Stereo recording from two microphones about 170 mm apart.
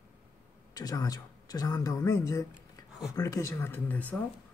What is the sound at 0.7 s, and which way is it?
Speech, 20° left (ahead or behind).